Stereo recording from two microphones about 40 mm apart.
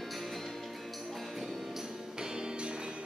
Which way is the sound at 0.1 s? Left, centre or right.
Centre.